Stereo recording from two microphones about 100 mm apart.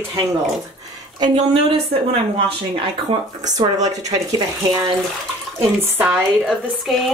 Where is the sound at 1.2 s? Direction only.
65° right (ahead or behind).